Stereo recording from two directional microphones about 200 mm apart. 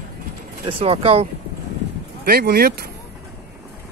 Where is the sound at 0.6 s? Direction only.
30° right (ahead or behind).